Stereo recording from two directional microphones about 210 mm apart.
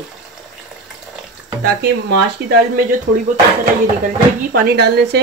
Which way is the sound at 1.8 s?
50° right (ahead or behind).